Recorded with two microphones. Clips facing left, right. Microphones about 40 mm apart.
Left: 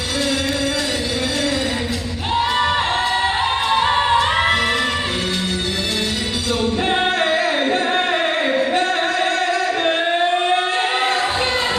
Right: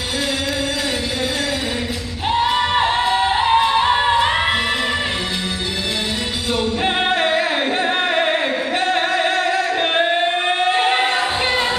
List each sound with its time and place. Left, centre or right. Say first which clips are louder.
2.5 s music: right 1 dB; centre
6.8 s music: right 1 dB; centre
10.7 s a sound: right 2 dB; centre